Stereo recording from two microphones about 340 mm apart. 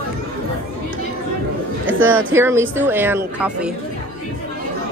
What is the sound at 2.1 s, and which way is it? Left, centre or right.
Speech, right.